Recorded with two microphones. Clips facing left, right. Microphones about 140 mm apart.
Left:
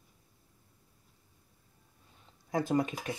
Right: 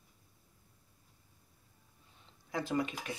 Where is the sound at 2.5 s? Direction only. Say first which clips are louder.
Left 5 dB; 40° left (ahead or behind).